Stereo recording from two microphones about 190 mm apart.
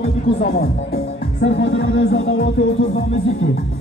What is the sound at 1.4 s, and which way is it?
Music, 65° left (ahead or behind).